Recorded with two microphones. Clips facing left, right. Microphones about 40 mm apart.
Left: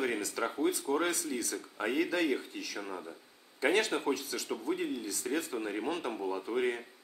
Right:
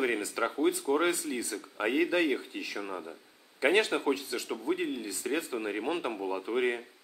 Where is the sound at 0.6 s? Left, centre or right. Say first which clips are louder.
Right 4 dB; right.